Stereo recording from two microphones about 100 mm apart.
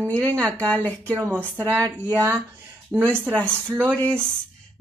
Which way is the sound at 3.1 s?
20° right (ahead or behind).